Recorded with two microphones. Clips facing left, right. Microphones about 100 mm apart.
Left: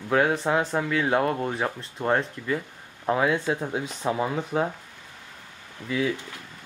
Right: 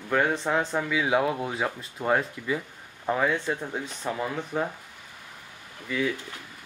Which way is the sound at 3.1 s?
5° left (ahead or behind).